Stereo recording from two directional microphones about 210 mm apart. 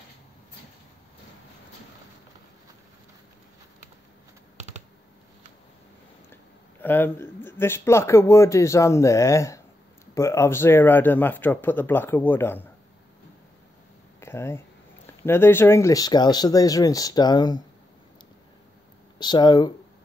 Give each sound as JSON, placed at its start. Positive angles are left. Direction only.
{"t": 6.3, "sound": "speech", "side_deg": 10}
{"t": 14.2, "sound": "speech", "side_deg": 10}
{"t": 19.1, "sound": "speech", "side_deg": 20}